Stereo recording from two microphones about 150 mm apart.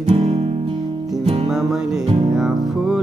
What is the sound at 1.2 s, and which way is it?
Music, 40° right (ahead or behind).